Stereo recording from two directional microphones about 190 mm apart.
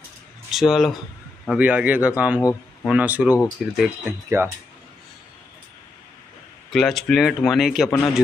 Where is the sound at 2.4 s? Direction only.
15° left (ahead or behind).